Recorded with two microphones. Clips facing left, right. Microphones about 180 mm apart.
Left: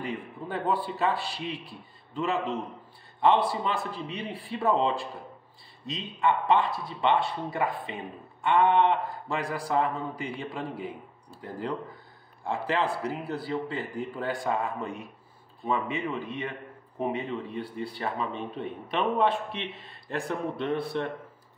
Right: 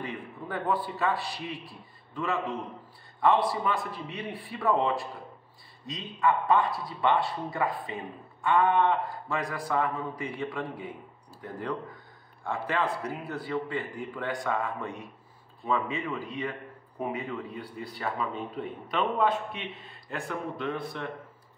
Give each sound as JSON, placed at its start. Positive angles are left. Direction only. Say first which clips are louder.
{"t": 0.0, "sound": "a man's voice", "louder": "left 2 dB", "side_deg": 25}
{"t": 12.4, "sound": "a man's voice", "louder": "left 2 dB", "side_deg": 30}